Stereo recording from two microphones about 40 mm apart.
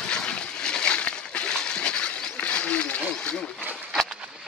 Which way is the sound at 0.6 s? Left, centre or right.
Left.